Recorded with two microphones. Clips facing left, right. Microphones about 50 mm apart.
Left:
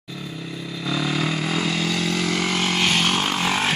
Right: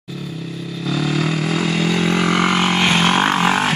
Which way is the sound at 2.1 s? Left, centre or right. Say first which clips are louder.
Right 6 dB; right.